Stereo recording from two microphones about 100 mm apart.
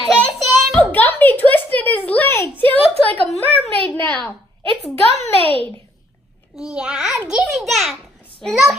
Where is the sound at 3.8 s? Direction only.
15° left (ahead or behind).